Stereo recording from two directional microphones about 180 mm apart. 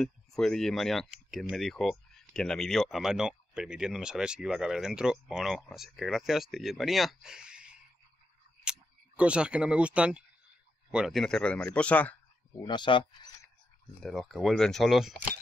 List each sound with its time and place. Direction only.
0.0 s speech: centre (ahead or behind)
12.6 s speech: 25° left (ahead or behind)
14.0 s speech: centre (ahead or behind)